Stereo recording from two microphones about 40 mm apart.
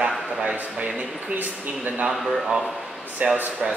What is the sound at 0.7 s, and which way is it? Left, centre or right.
Speech, right.